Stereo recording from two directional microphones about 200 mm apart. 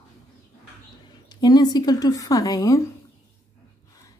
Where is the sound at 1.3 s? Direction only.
20° left (ahead or behind).